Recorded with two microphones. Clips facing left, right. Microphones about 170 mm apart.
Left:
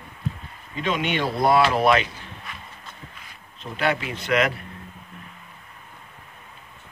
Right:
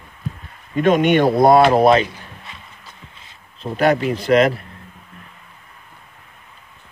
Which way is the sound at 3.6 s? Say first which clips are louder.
Right 8 dB; 40° right (ahead or behind).